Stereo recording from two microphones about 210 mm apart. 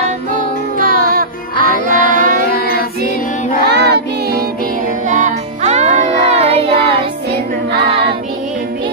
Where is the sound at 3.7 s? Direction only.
55° right (ahead or behind).